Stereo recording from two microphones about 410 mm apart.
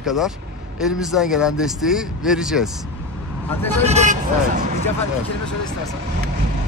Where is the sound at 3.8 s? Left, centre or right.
Centre.